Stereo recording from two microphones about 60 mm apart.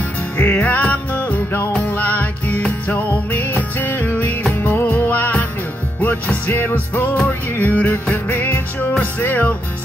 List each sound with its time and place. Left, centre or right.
0.4 s music: left